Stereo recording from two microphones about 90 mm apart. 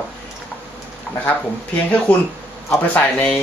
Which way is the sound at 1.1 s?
5° left (ahead or behind).